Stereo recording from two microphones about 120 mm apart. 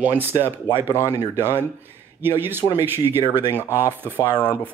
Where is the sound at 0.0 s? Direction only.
15° right (ahead or behind).